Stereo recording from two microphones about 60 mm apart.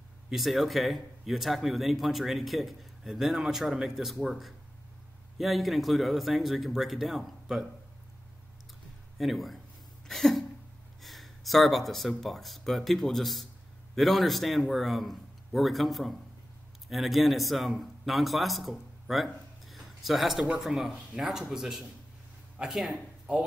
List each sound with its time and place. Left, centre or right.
0.3 s speech: centre
9.2 s speech: centre
10.0 s a sound: centre
11.0 s a man's voice: centre
23.3 s speech: centre